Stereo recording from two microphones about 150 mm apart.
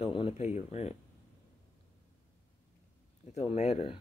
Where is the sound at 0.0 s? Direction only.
40° left (ahead or behind).